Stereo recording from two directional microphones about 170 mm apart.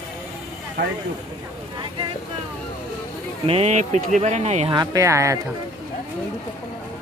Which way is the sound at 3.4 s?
35° right (ahead or behind).